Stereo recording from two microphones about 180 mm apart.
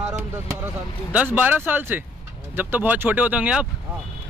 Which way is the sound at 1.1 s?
10° right (ahead or behind).